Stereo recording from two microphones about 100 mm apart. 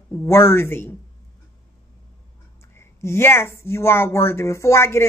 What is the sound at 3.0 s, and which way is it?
A woman's voice, 25° left (ahead or behind).